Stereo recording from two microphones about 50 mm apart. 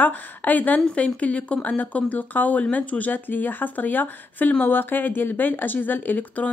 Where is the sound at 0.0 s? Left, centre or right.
Left.